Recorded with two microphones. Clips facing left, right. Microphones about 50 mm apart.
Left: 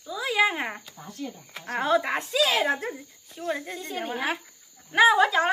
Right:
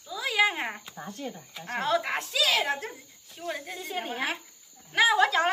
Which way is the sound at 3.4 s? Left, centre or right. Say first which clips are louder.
Left 4 dB; centre.